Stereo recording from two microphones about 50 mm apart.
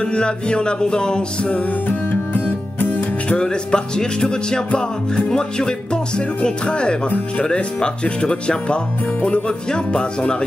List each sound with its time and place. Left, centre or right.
0.0 s music: centre
1.9 s music: left
3.3 s music: centre